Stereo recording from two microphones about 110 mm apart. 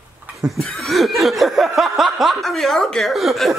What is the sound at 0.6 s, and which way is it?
Snicker, centre (ahead or behind).